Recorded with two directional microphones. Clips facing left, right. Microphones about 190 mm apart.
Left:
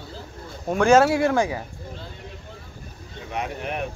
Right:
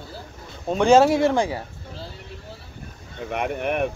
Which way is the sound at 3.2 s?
60° right (ahead or behind).